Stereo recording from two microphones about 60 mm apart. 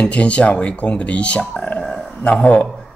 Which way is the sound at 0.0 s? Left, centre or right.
Left.